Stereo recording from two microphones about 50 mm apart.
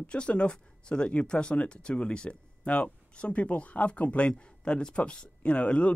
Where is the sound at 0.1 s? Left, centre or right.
Left.